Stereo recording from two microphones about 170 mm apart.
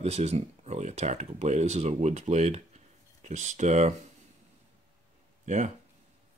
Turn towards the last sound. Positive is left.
turn(degrees=-45)  # may be behind; listen again after turning